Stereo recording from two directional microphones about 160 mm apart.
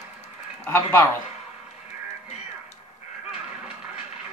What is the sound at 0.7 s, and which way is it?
Speech, 15° left (ahead or behind).